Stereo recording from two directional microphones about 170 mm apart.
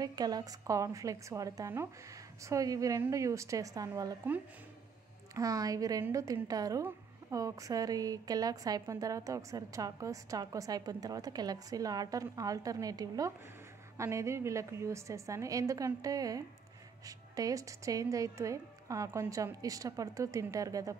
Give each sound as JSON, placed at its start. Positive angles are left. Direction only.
{"t": 0.0, "sound": "a woman's voice", "side_deg": -25}
{"t": 5.3, "sound": "a woman's voice", "side_deg": -20}